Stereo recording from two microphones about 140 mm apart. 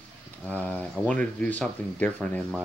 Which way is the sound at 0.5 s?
10° left (ahead or behind).